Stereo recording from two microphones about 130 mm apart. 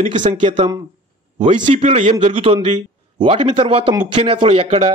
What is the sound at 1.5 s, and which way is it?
Speech, 60° right (ahead or behind).